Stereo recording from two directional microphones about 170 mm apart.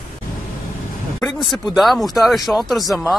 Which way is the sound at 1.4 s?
Centre (ahead or behind).